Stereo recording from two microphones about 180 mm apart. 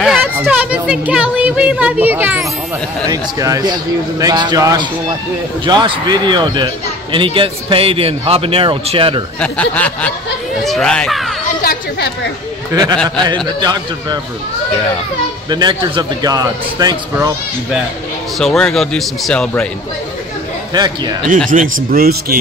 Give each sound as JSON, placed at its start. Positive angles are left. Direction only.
{"t": 0.0, "sound": "a woman's voice", "side_deg": -5}
{"t": 9.4, "sound": "speech", "side_deg": 5}
{"t": 11.4, "sound": "a woman's voice", "side_deg": 50}
{"t": 12.9, "sound": "speech", "side_deg": 5}
{"t": 13.2, "sound": "speech", "side_deg": -25}
{"t": 15.5, "sound": "speech", "side_deg": -25}
{"t": 18.4, "sound": "speech", "side_deg": 5}
{"t": 20.7, "sound": "speech", "side_deg": -25}
{"t": 21.5, "sound": "speech", "side_deg": -45}
{"t": 21.9, "sound": "speech", "side_deg": -55}